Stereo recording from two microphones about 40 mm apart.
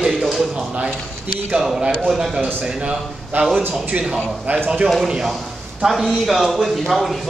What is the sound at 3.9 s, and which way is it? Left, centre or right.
Speech, right.